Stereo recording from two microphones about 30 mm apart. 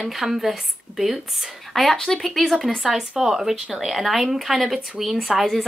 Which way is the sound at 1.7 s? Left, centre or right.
Centre.